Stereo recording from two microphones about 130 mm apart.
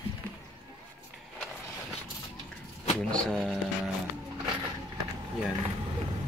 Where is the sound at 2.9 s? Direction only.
5° left (ahead or behind).